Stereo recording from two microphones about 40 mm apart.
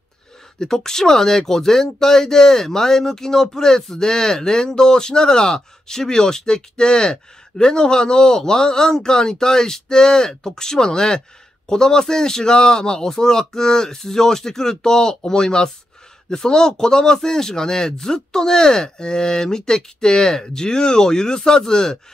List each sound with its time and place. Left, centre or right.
0.6 s speech: centre